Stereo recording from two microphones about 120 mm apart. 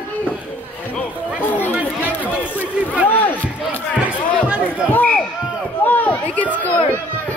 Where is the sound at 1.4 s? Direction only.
15° left (ahead or behind).